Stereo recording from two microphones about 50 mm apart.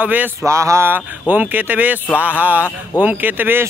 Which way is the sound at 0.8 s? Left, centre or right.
Right.